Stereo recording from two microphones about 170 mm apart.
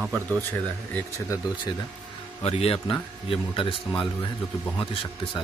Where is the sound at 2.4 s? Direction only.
35° left (ahead or behind).